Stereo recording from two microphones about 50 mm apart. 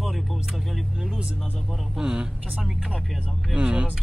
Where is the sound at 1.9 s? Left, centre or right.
Centre.